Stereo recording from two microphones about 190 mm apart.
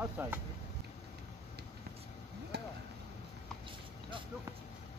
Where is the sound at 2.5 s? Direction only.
60° right (ahead or behind).